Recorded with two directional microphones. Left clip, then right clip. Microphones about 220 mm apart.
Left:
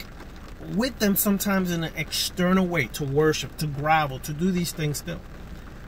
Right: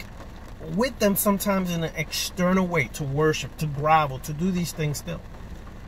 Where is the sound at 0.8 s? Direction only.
Centre (ahead or behind).